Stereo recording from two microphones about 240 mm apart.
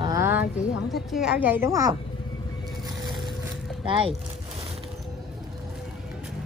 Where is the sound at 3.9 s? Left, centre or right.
Right.